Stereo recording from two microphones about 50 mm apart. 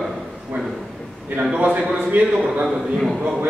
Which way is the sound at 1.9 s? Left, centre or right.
Right.